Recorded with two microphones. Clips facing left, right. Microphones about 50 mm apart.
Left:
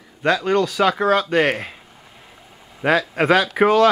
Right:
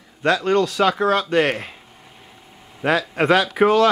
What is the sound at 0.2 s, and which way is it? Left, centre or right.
Speech, centre.